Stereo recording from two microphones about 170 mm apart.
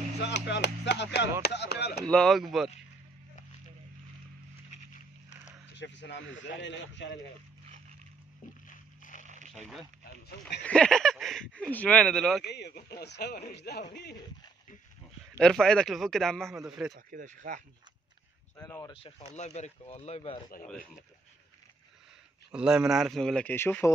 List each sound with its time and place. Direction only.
0.2 s speech: 85° left
2.0 s speech: 5° left (ahead or behind)
5.8 s a man's voice: 90° left
8.6 s a sound: 50° left (ahead or behind)
9.2 s zipper: 45° right (ahead or behind)
10.6 s speech: 5° left (ahead or behind)
12.4 s speech: 80° left
15.3 s speech: 5° left (ahead or behind)
16.9 s speech: 55° right (ahead or behind)
18.9 s speech: 35° left (ahead or behind)
22.5 s speech: 5° right (ahead or behind); by 23.9 s 15° left (ahead or behind)